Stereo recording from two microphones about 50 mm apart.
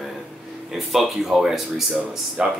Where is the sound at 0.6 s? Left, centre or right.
Centre.